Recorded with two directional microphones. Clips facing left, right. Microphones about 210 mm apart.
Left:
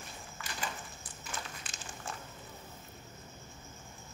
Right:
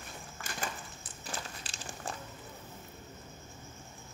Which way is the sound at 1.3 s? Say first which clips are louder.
Right 2 dB; 35° right (ahead or behind).